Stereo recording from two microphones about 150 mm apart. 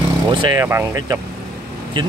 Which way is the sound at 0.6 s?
15° right (ahead or behind).